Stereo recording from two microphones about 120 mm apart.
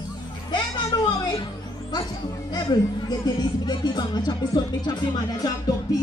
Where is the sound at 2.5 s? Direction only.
35° left (ahead or behind).